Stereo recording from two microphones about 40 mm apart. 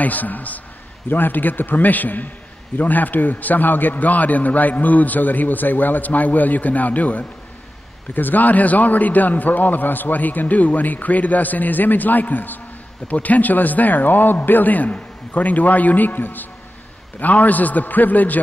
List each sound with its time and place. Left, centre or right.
0.0 s a man's voice: left
1.0 s a man's voice: left
17.2 s a man's voice: left